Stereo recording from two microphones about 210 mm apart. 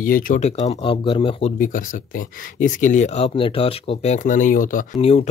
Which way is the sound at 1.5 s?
40° left (ahead or behind).